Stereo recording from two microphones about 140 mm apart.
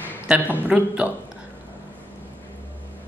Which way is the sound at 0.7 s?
10° right (ahead or behind).